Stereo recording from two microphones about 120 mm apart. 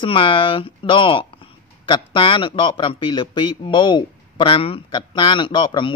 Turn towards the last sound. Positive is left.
turn(degrees=40)  # may be behind; listen again after turning